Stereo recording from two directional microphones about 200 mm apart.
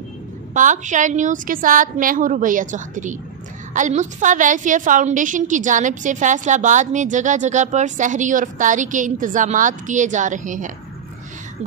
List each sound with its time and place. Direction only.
0.6 s a woman's voice: 40° right (ahead or behind)